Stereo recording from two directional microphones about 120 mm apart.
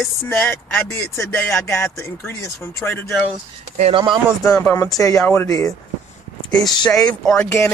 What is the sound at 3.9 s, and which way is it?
Speech, 40° right (ahead or behind).